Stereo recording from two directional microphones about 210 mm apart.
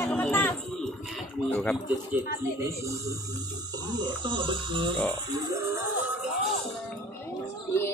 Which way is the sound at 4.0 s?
25° right (ahead or behind).